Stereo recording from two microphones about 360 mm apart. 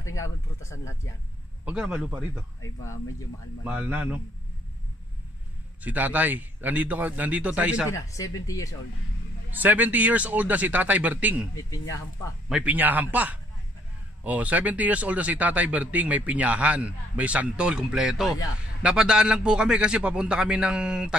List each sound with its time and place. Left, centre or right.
0.1 s speech: centre
1.7 s speech: centre
3.6 s speech: centre
5.9 s speech: centre
7.9 s speech: centre
9.5 s speech: centre
12.4 s speech: centre